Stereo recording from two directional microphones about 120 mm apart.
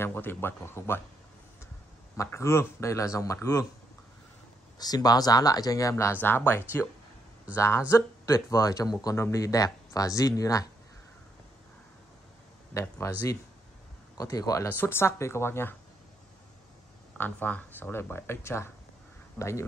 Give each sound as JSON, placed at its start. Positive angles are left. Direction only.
{"t": 0.0, "sound": "speech", "side_deg": 20}
{"t": 2.1, "sound": "speech", "side_deg": 20}
{"t": 4.7, "sound": "speech", "side_deg": 35}
{"t": 12.7, "sound": "speech", "side_deg": 20}
{"t": 14.1, "sound": "speech", "side_deg": 30}
{"t": 14.7, "sound": "speech", "side_deg": 15}
{"t": 17.2, "sound": "speech", "side_deg": 15}